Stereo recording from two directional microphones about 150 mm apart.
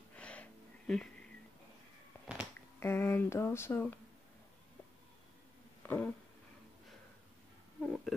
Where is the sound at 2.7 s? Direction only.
15° left (ahead or behind).